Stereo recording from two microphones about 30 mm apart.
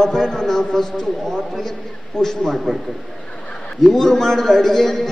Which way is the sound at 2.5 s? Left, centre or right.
Centre.